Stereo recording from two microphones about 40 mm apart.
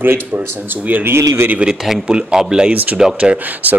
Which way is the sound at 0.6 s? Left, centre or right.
Right.